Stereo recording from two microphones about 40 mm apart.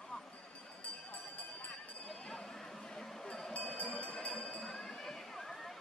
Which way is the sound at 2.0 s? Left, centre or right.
Centre.